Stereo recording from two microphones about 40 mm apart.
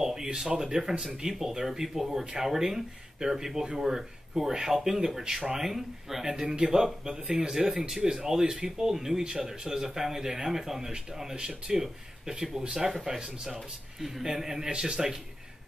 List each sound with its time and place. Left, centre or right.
0.0 s speech: centre
6.2 s speech: centre
9.2 s speech: right